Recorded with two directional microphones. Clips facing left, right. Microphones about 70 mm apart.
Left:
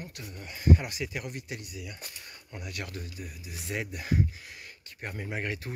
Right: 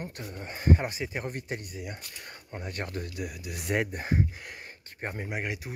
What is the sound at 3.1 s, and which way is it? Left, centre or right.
Speech, right.